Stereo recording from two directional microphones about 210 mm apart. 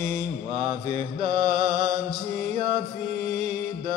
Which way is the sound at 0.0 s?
35° right (ahead or behind).